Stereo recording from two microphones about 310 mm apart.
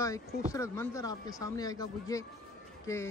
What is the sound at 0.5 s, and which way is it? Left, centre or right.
Speech, centre.